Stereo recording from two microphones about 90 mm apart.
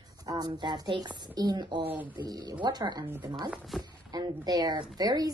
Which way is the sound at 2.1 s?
55° right (ahead or behind).